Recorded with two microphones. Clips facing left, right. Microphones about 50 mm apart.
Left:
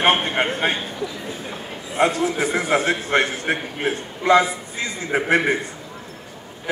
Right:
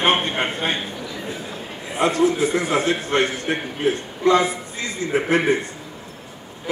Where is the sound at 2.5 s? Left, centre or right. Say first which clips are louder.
Even; left.